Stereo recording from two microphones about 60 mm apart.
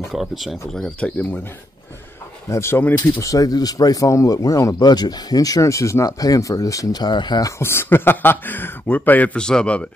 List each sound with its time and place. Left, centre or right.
0.1 s speech: centre
1.0 s speech: centre
2.5 s speech: left
3.2 s speech: left
7.5 s speech: left
9.4 s a man's voice: centre